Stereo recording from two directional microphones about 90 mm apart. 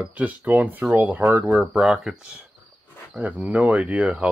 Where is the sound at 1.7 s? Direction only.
5° right (ahead or behind).